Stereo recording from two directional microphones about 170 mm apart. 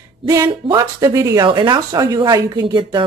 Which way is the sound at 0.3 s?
20° right (ahead or behind).